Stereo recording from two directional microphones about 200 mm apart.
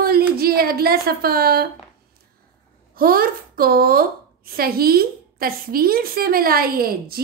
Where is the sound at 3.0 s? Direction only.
45° right (ahead or behind).